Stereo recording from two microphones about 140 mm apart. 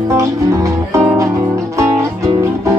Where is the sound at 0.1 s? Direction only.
20° right (ahead or behind).